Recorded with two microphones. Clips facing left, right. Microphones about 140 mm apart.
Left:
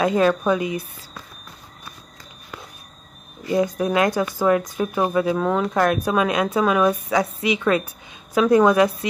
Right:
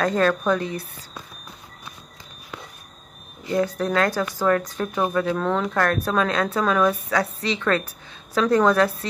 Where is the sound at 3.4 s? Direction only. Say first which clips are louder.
Left 2 dB; 10° left (ahead or behind).